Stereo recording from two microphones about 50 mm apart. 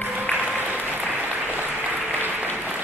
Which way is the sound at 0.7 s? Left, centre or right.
Right.